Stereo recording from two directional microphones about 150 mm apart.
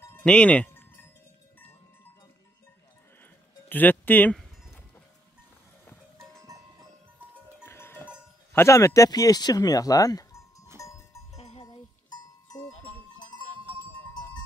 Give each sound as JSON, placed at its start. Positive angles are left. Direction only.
{"t": 0.1, "sound": "sheep", "side_deg": 10}
{"t": 3.6, "sound": "speech", "side_deg": 10}
{"t": 6.1, "sound": "music", "side_deg": -20}
{"t": 7.6, "sound": "goat", "side_deg": 15}
{"t": 8.5, "sound": "speech", "side_deg": 20}
{"t": 10.8, "sound": "music", "side_deg": 20}